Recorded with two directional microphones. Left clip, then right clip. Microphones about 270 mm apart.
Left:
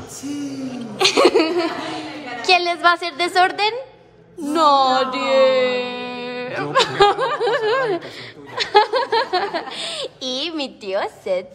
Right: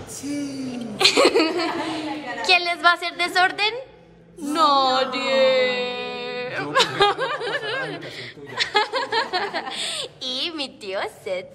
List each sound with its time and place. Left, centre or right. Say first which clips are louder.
0.9 s a woman's voice: left 2 dB; centre